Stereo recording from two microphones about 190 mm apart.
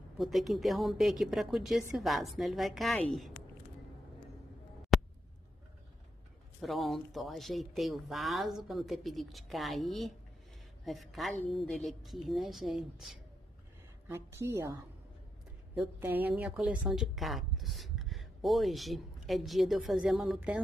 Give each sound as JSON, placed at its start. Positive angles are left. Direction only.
{"t": 0.2, "sound": "speech", "side_deg": 0}
{"t": 4.9, "sound": "a sound", "side_deg": 0}
{"t": 6.6, "sound": "speech", "side_deg": 0}
{"t": 14.0, "sound": "a woman's voice", "side_deg": -15}
{"t": 15.8, "sound": "a woman's voice", "side_deg": -10}